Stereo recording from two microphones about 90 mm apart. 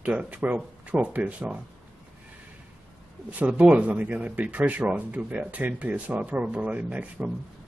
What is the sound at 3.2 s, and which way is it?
Speech, 15° right (ahead or behind).